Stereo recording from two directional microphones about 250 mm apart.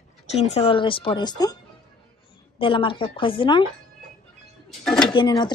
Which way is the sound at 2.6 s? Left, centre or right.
Left.